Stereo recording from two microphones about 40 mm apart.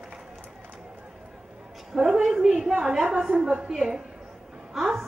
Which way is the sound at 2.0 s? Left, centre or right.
Centre.